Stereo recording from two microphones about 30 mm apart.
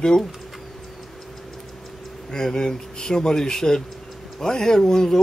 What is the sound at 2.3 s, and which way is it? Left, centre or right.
Speech, left.